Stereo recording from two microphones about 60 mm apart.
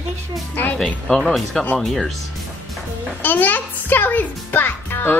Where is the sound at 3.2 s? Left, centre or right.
Left.